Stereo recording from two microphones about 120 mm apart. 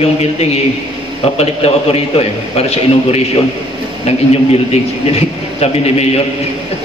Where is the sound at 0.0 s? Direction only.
60° left (ahead or behind).